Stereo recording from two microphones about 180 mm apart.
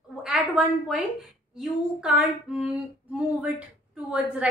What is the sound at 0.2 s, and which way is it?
A woman's voice, 5° right (ahead or behind).